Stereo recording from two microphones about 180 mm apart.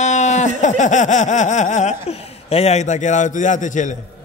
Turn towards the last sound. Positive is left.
turn(degrees=45)  # may be behind; listen again after turning